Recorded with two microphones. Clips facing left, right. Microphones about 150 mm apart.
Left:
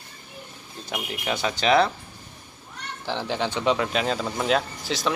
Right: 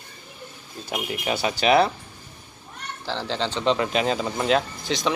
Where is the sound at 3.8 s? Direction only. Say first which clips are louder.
Right 2 dB; centre (ahead or behind).